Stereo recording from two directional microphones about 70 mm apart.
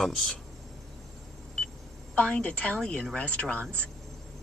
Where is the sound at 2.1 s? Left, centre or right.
Centre.